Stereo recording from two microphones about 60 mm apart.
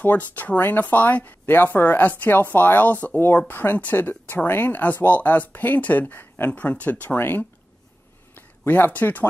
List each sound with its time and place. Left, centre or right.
0.0 s speech: left